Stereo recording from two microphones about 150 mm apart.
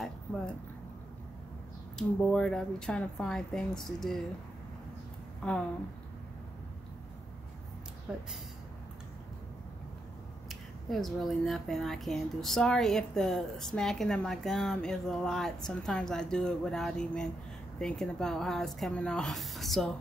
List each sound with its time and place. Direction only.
2.0 s speech: 5° left (ahead or behind)
8.1 s speech: 5° right (ahead or behind)
10.5 s speech: centre (ahead or behind)